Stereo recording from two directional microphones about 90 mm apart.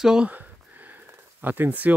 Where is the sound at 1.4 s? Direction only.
20° right (ahead or behind).